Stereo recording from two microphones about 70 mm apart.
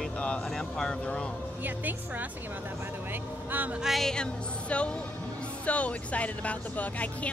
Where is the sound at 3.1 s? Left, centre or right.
Right.